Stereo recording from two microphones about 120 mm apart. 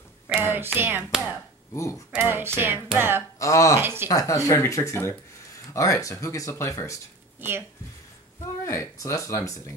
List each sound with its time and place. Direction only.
0.4 s hands: 20° right (ahead or behind)
1.1 s a sound: 5° right (ahead or behind)
1.7 s speech: 25° left (ahead or behind)
2.1 s hands: 15° right (ahead or behind)
3.0 s speech: 20° right (ahead or behind)
3.3 s speech: 25° left (ahead or behind)
3.8 s speech: 20° right (ahead or behind)
4.1 s speech: 30° left (ahead or behind)
7.3 s speech: 15° right (ahead or behind)
8.6 s speech: 25° left (ahead or behind)